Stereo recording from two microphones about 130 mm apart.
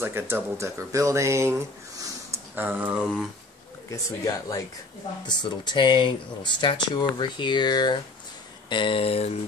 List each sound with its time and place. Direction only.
0.0 s speech: 20° right (ahead or behind)
3.0 s speech: centre (ahead or behind)
3.9 s speech: 25° left (ahead or behind); by 9.4 s 50° left (ahead or behind)